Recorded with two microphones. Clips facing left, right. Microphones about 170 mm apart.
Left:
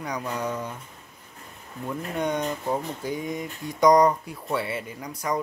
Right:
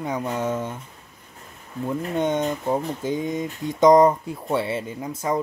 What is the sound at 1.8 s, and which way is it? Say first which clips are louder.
Speech: right 4 dB; 25° right (ahead or behind).